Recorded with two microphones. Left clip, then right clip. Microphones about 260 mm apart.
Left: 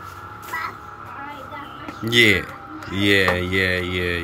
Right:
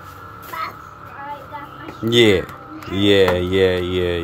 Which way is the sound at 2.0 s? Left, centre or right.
Centre.